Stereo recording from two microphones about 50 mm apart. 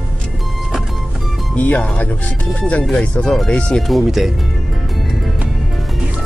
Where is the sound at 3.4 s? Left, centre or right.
Centre.